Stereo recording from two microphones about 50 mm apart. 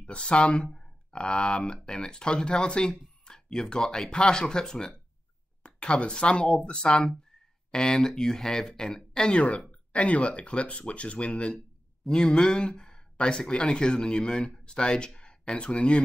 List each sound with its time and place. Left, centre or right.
0.0 s speech: centre